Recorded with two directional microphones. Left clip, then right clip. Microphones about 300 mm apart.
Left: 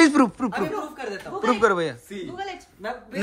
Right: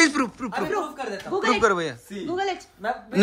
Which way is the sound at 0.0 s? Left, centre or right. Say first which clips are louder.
Left 3 dB; centre.